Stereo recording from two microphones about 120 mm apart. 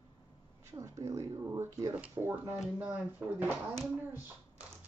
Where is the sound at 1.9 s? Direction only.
10° right (ahead or behind).